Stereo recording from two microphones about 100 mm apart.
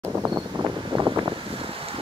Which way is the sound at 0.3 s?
50° right (ahead or behind).